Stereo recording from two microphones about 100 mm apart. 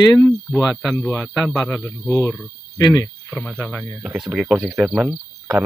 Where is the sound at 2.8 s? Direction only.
35° left (ahead or behind).